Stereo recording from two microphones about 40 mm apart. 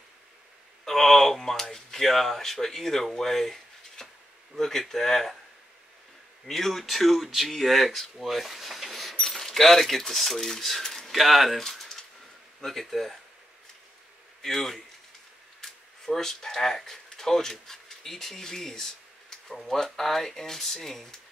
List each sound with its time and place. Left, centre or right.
0.8 s speech: centre
3.2 s a sound: centre
4.6 s speech: centre
6.4 s speech: centre
11.6 s a sound: centre
12.5 s speech: centre
14.4 s speech: centre
19.3 s a sound: centre
19.8 s speech: centre